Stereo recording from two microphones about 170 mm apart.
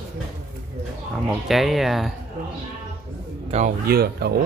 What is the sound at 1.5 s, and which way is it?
Speech, centre (ahead or behind).